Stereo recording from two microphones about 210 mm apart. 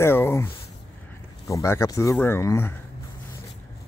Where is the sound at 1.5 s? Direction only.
15° left (ahead or behind).